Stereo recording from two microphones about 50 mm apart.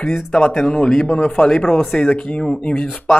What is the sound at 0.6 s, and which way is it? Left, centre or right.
Speech, centre.